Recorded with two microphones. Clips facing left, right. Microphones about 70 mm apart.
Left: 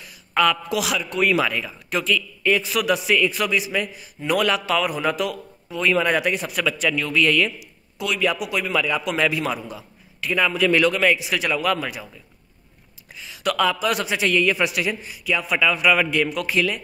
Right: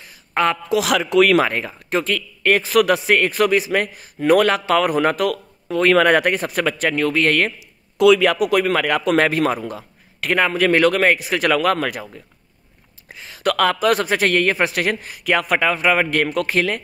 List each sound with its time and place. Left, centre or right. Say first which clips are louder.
0.0 s a sound: right 1 dB; right
0.8 s speech: right 8 dB; right
1.4 s a man's voice: right 3 dB; right
1.7 s speech: right 2 dB; right
2.1 s a man's voice: right 3 dB; right
5.3 s a man's voice: right 8 dB; right
8.0 s a man's voice: right 10 dB; right
8.4 s a man's voice: right 6 dB; right
11.8 s a man's voice: right 6 dB; right
13.1 s a man's voice: right 4 dB; right
14.9 s a man's voice: right 4 dB; right